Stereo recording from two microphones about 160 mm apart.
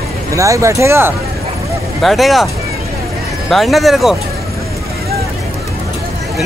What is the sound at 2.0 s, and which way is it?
Speech, centre (ahead or behind).